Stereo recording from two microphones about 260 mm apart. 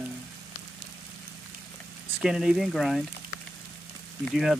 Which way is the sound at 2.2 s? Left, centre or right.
Centre.